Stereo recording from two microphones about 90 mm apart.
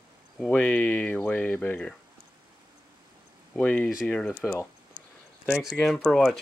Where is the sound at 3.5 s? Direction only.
15° left (ahead or behind).